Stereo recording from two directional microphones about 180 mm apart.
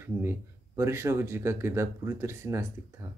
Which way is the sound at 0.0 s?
15° right (ahead or behind).